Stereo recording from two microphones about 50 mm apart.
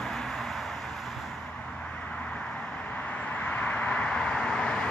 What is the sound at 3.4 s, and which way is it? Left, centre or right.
Vehicle, left.